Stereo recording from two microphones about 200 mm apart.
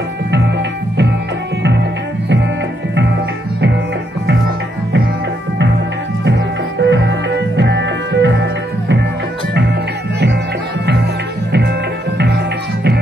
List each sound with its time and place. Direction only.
6.8 s music: 60° right (ahead or behind)